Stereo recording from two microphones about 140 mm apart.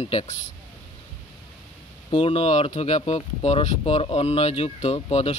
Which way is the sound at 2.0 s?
40° left (ahead or behind).